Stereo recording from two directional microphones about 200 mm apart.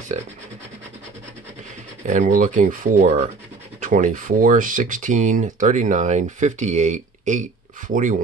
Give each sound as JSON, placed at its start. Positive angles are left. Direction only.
{"t": 2.0, "sound": "speech", "side_deg": -40}